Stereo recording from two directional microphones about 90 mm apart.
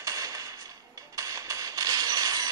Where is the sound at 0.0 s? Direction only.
40° right (ahead or behind).